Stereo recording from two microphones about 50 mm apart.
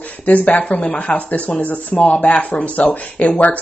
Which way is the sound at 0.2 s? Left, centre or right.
Left.